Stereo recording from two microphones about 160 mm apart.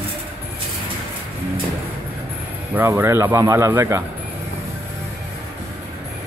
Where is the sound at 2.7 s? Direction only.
15° right (ahead or behind).